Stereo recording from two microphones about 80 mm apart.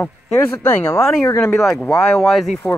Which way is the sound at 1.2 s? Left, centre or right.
Left.